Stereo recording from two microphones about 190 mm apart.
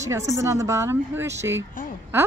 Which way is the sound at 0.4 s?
15° right (ahead or behind).